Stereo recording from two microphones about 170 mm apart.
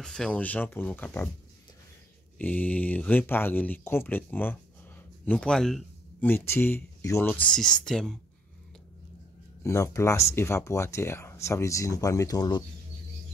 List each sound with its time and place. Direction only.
0.0 s speech: 5° left (ahead or behind)
2.3 s speech: 10° left (ahead or behind)
9.6 s speech: 15° left (ahead or behind)